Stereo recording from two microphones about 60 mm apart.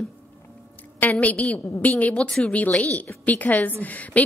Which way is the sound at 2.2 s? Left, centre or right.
Centre.